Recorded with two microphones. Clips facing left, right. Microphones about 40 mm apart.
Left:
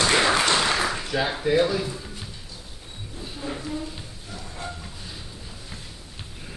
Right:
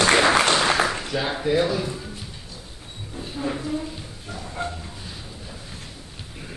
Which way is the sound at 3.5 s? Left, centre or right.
Centre.